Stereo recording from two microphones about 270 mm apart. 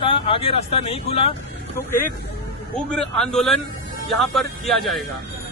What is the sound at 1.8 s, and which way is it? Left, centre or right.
A man's voice, centre.